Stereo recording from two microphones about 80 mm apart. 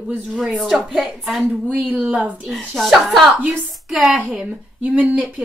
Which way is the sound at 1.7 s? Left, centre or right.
Centre.